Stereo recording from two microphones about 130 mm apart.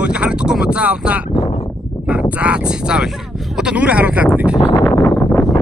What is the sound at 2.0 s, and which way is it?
Speech, 10° right (ahead or behind).